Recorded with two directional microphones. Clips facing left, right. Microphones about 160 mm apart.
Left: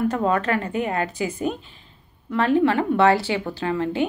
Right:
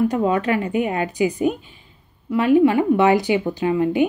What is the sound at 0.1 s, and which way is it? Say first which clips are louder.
A woman's voice: right 2 dB; 15° right (ahead or behind).